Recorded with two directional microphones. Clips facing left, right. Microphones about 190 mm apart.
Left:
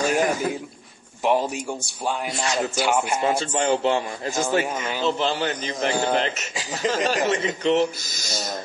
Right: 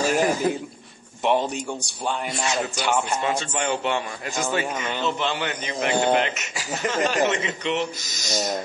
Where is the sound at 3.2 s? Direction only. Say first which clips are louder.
Left 3 dB; 30° left (ahead or behind).